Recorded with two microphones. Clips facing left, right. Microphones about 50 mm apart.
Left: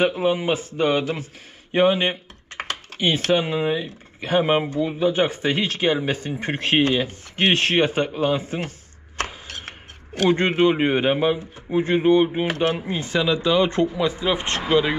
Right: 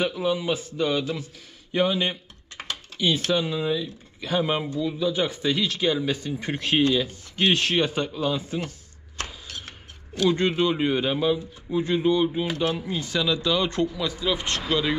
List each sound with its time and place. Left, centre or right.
0.0 s speech: left